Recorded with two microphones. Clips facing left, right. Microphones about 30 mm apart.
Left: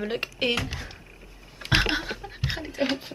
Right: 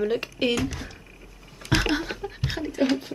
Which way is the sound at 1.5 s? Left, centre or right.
Left.